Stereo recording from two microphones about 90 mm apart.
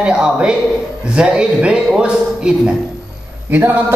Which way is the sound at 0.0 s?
10° right (ahead or behind).